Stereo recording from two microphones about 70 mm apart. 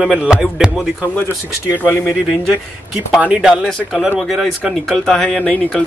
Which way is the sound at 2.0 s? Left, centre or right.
Centre.